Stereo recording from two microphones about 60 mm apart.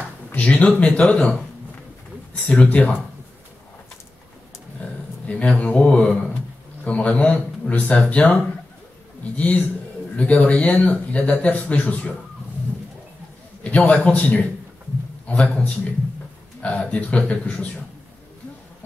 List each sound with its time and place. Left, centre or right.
0.4 s speech: left
2.5 s speech: left
5.2 s speech: left
10.1 s speech: left
13.7 s speech: left